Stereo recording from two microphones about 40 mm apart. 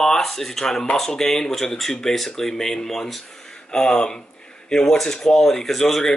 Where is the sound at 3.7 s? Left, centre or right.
Left.